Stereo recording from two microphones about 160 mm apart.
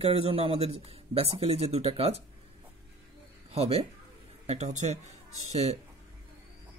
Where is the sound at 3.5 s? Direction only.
40° right (ahead or behind).